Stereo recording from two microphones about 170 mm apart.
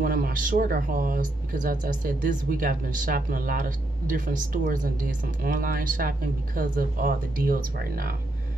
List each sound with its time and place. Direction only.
0.0 s speech: 55° right (ahead or behind)